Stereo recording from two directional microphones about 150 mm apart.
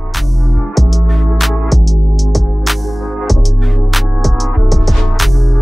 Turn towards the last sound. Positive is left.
turn(degrees=0)  # may be behind; listen again after turning